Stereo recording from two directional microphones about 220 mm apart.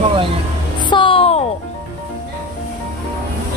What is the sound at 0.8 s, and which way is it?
Music, 20° left (ahead or behind).